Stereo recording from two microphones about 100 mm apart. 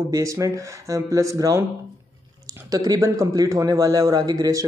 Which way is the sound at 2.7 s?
40° right (ahead or behind).